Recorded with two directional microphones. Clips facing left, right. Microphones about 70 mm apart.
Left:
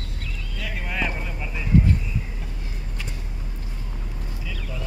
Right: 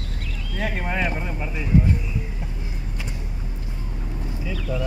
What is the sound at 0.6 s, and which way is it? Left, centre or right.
Speech, right.